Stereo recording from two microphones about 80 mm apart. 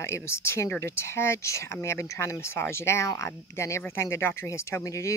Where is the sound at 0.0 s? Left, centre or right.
Left.